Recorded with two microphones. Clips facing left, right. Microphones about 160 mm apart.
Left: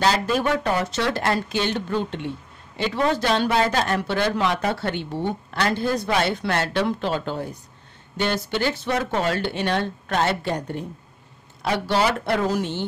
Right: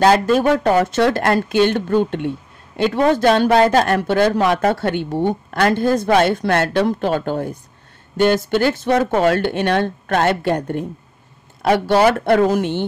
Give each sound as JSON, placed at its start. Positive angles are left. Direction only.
{"t": 0.0, "sound": "a woman's voice", "side_deg": -50}